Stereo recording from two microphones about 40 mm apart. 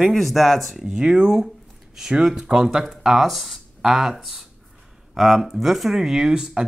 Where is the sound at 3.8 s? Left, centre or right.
Centre.